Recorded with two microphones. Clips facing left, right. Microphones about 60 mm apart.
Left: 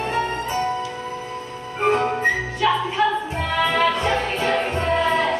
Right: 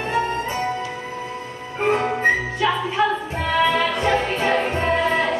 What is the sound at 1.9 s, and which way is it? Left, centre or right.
Music, right.